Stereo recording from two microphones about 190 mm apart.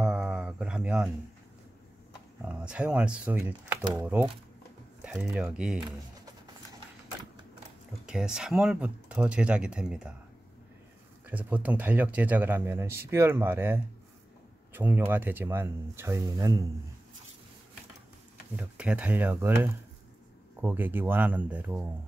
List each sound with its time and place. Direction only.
0.0 s a sound: 5° right (ahead or behind)
2.4 s speech: 5° right (ahead or behind)
5.9 s a sound: 20° right (ahead or behind)
8.1 s speech: 5° right (ahead or behind)
11.2 s speech: 10° right (ahead or behind)
18.6 s speech: 5° right (ahead or behind)